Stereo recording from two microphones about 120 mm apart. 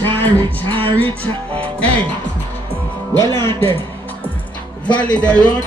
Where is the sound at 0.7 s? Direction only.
45° right (ahead or behind).